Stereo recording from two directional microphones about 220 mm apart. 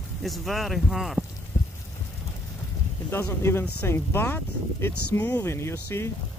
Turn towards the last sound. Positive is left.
turn(degrees=10)  # may be behind; listen again after turning